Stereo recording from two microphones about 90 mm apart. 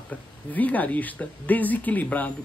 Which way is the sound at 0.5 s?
20° left (ahead or behind).